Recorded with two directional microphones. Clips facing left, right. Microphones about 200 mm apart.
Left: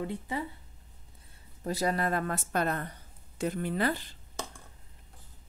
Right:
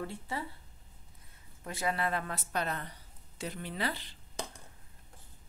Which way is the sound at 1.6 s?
35° left (ahead or behind).